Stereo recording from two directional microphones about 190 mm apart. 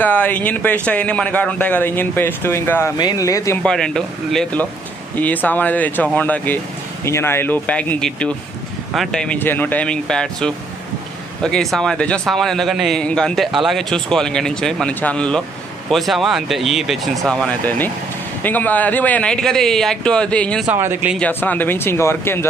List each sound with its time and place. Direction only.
0.0 s a man's voice: 10° left (ahead or behind)
3.6 s a man's voice: 5° left (ahead or behind)
20.6 s speech: 10° right (ahead or behind)
21.2 s a man's voice: 10° left (ahead or behind)